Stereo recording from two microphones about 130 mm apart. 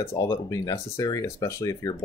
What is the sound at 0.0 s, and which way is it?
Speech, 25° left (ahead or behind).